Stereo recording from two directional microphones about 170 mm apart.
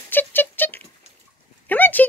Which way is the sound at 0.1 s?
10° left (ahead or behind).